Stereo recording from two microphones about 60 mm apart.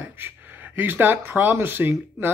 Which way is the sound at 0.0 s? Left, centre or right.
Right.